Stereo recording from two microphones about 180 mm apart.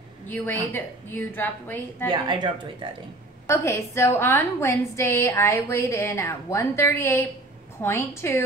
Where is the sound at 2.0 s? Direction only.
25° right (ahead or behind).